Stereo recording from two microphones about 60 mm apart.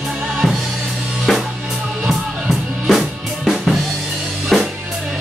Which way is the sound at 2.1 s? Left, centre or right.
Centre.